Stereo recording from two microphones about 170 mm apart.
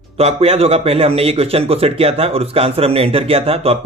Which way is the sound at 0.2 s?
35° right (ahead or behind).